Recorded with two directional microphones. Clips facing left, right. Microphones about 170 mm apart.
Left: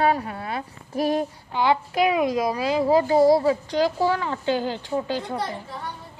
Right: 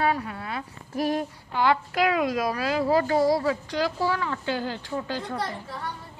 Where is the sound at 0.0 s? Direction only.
35° left (ahead or behind); by 5.4 s 20° left (ahead or behind).